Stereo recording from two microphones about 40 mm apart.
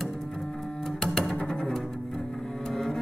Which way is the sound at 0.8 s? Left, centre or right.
Centre.